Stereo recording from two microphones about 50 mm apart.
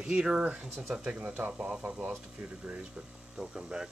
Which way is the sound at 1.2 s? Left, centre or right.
Right.